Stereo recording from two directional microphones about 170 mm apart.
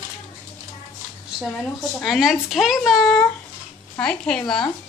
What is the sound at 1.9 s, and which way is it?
Speech, centre (ahead or behind).